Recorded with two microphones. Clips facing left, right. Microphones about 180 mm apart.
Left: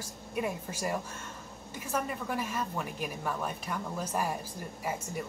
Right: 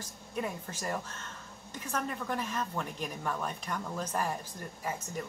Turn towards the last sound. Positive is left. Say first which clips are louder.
# left 2 dB
turn(degrees=10)  # may be behind; listen again after turning